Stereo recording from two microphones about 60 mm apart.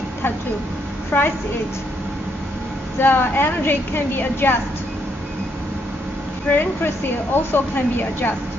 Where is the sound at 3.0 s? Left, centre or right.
Left.